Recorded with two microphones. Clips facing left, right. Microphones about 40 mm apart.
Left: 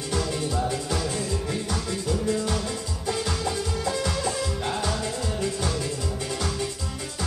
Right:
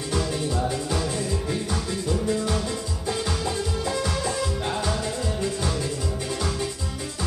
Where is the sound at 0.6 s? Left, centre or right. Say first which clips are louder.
Right 1 dB; centre.